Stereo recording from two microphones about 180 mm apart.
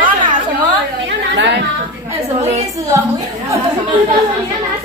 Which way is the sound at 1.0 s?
75° right (ahead or behind).